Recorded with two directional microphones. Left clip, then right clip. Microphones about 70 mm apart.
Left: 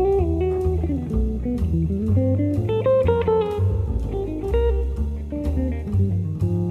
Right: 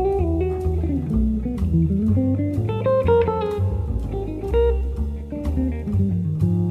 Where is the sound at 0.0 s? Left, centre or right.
Centre.